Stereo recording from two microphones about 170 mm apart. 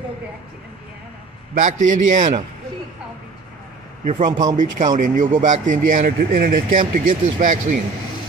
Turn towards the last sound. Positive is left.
turn(degrees=-50)  # may be behind; listen again after turning